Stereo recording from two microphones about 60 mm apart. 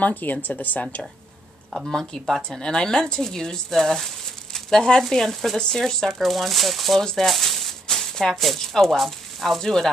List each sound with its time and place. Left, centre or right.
0.0 s speech: left
1.9 s a woman's voice: centre